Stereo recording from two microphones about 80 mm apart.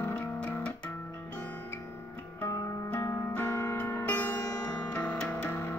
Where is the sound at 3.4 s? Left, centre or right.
Left.